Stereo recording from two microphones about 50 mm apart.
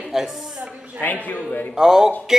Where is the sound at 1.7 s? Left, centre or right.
Centre.